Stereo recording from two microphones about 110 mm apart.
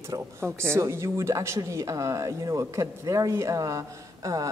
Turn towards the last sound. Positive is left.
turn(degrees=-30)  # may be behind; listen again after turning